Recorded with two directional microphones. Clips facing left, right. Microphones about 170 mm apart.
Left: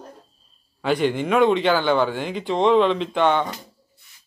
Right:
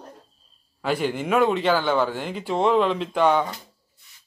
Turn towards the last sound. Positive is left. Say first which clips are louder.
# even
turn(degrees=-5)  # may be behind; listen again after turning